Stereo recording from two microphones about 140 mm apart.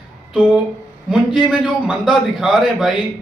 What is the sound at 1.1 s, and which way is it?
A man's voice, 5° right (ahead or behind).